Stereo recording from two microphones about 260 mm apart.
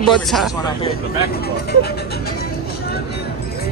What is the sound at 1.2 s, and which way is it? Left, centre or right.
Speech, left.